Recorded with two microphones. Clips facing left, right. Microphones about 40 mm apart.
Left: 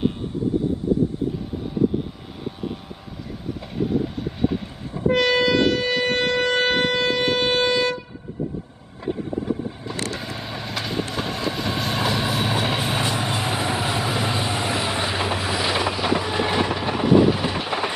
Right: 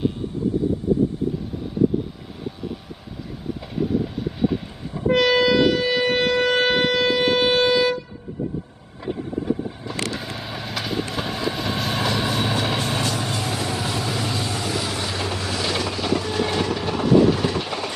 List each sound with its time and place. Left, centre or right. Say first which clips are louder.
3.7 s train: even; centre
9.0 s vehicle: even; centre